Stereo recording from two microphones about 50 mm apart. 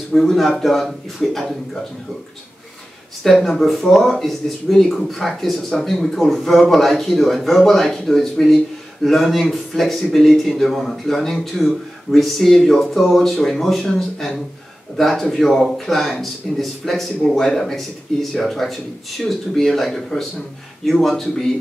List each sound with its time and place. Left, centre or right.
0.1 s a man's voice: centre
3.3 s a man's voice: centre